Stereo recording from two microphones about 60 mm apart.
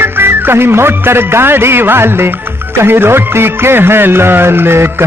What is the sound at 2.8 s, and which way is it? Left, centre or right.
Music, right.